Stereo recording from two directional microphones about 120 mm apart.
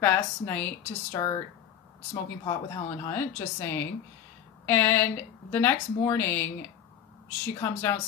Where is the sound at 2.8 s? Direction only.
20° left (ahead or behind).